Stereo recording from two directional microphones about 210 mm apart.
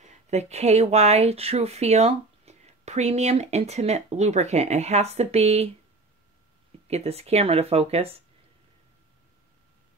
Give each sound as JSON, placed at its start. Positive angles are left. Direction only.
{"t": 0.0, "sound": "speech", "side_deg": -35}
{"t": 6.9, "sound": "speech", "side_deg": -30}